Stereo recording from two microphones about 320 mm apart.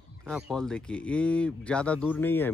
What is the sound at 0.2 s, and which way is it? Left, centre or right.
Speech, centre.